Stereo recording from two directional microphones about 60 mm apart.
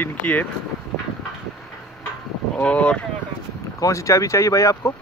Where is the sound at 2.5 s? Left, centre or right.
Centre.